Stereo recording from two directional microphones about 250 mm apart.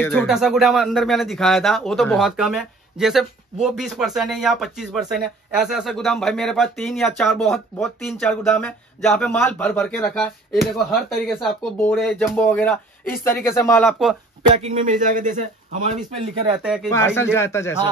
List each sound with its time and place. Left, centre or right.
0.0 s speech: centre
14.6 s a man's voice: right
16.6 s speech: centre
16.9 s speech: centre